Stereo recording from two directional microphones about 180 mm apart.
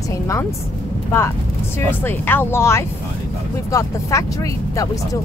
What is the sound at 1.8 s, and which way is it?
Speech, 10° left (ahead or behind).